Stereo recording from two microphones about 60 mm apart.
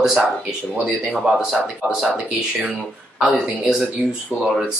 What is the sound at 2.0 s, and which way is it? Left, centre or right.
Speech, right.